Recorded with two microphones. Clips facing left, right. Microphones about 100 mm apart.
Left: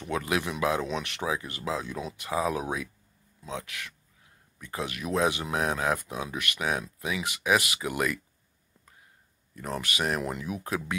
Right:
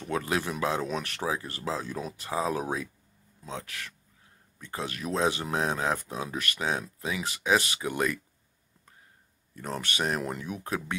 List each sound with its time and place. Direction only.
0.1 s speech: 35° right (ahead or behind)
9.8 s speech: 30° right (ahead or behind)